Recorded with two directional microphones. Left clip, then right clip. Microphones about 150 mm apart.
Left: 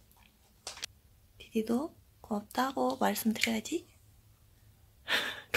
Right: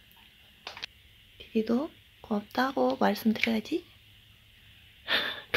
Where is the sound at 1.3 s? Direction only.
10° right (ahead or behind).